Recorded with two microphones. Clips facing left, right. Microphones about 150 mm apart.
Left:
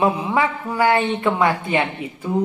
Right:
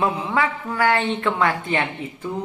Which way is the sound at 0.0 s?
15° left (ahead or behind).